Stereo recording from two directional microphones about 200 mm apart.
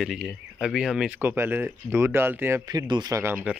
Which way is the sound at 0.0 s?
Centre (ahead or behind).